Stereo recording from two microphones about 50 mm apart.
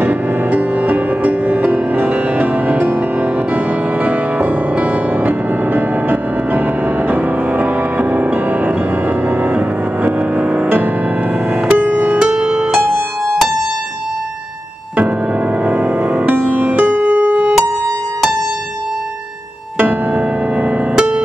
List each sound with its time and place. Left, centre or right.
0.0 s music: right
12.8 s music: right
15.6 s music: right
16.4 s music: right
19.8 s music: right